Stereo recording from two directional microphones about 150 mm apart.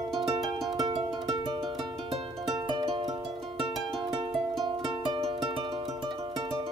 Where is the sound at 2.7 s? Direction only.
35° right (ahead or behind).